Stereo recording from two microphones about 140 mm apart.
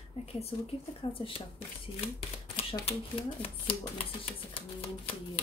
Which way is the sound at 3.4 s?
40° left (ahead or behind).